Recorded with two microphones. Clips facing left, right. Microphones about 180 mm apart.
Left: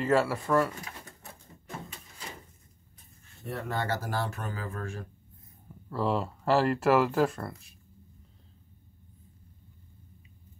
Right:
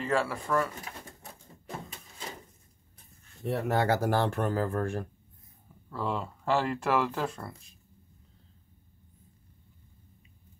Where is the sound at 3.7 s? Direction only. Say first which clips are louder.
Right 6 dB; 75° right (ahead or behind); by 5.1 s 60° right (ahead or behind).